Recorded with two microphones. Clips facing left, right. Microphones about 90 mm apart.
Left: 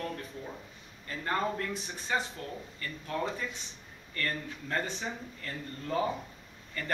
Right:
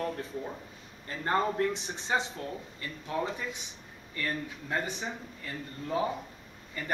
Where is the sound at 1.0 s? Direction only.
25° right (ahead or behind).